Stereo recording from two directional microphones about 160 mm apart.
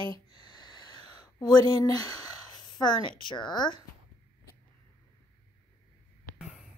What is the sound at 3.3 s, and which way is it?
Speech, 30° left (ahead or behind).